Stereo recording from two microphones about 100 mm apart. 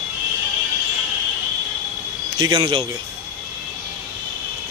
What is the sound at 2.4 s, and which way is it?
Speech, 45° right (ahead or behind).